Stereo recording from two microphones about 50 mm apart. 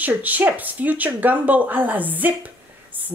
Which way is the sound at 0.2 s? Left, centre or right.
Right.